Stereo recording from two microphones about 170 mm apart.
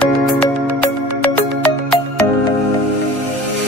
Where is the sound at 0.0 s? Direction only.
5° left (ahead or behind).